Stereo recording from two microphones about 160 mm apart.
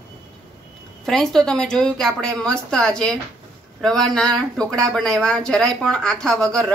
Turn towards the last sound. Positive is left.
turn(degrees=5)  # may be behind; listen again after turning